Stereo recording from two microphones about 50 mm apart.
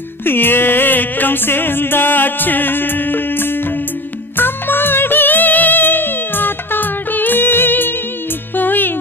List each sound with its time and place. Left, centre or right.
0.2 s music: left